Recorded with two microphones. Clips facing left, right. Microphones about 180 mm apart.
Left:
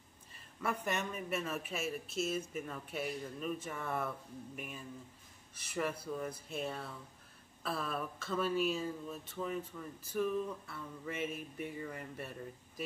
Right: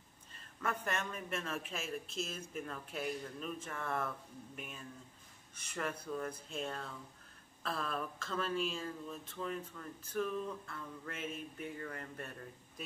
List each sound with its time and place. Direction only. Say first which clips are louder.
0.3 s speech: left 2 dB; 10° left (ahead or behind)